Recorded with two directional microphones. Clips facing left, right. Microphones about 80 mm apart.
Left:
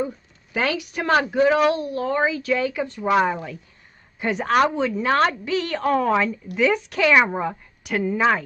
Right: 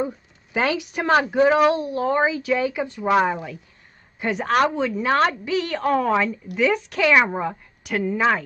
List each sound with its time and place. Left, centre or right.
0.0 s a woman's voice: centre